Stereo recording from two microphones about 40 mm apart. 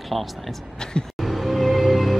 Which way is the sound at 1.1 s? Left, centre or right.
Centre.